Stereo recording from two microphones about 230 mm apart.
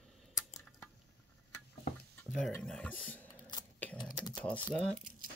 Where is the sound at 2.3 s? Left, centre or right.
Centre.